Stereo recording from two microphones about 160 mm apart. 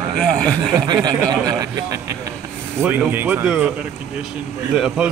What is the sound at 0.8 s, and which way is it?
Speech, 25° right (ahead or behind).